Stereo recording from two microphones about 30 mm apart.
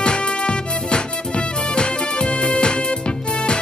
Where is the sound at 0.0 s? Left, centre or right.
Left.